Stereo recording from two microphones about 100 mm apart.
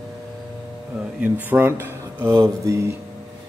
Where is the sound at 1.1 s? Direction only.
15° right (ahead or behind).